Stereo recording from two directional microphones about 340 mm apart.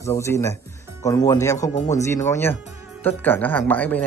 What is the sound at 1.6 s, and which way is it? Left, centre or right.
Speech, centre.